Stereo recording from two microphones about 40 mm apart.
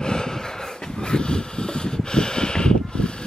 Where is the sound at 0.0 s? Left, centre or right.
Centre.